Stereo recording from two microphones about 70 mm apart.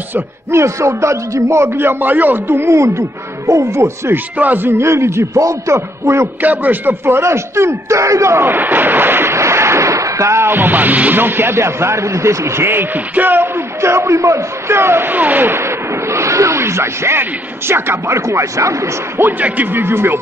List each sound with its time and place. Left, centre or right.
0.1 s a man's voice: right
4.4 s a man's voice: right
4.6 s a man's voice: right
6.4 s a man's voice: right
13.7 s a man's voice: right
15.5 s speech: right
19.4 s a man's voice: right